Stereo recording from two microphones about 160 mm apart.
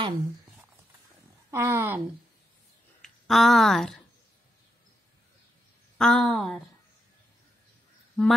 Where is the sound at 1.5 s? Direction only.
20° right (ahead or behind).